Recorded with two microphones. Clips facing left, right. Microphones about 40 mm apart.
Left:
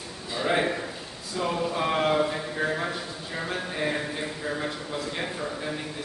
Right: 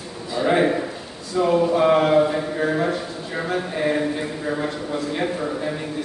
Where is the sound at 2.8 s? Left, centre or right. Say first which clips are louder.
Right 7 dB; centre.